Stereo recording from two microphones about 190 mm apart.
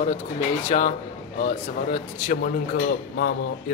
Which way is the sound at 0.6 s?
35° left (ahead or behind).